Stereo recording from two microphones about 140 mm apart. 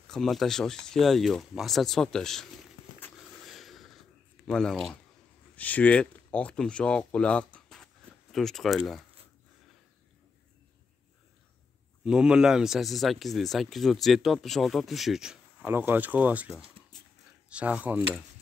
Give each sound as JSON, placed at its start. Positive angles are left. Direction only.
{"t": 0.1, "sound": "speech", "side_deg": 0}
{"t": 3.2, "sound": "a sound", "side_deg": 0}
{"t": 4.5, "sound": "speech", "side_deg": 5}
{"t": 12.0, "sound": "speech", "side_deg": -5}
{"t": 15.7, "sound": "speech", "side_deg": -15}